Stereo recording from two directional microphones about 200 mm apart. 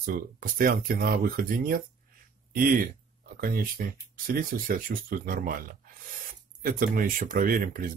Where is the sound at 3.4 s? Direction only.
45° right (ahead or behind).